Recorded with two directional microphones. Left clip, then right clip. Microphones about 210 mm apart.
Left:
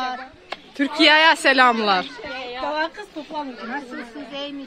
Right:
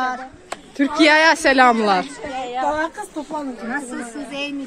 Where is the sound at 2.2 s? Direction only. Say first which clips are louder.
Right 5 dB; 25° left (ahead or behind).